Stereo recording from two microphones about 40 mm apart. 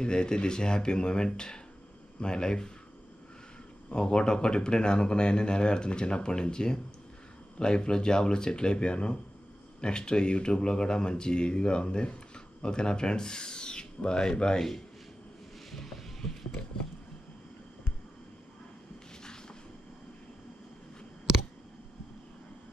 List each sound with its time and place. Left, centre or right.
0.0 s speech: left
3.9 s speech: left
15.7 s music: centre